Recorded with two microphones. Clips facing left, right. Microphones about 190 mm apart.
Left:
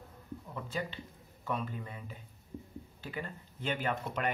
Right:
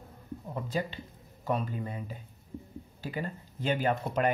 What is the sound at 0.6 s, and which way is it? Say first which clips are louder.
Speech: right 5 dB; 35° right (ahead or behind).